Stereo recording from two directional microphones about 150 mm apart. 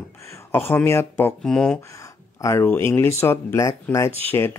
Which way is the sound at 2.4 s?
20° left (ahead or behind).